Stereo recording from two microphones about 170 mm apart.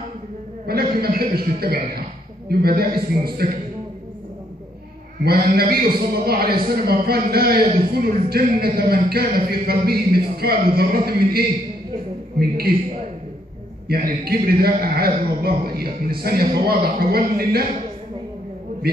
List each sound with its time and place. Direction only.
0.7 s a man's voice: 65° right (ahead or behind)
5.2 s a man's voice: 65° right (ahead or behind)
13.8 s a man's voice: 65° right (ahead or behind)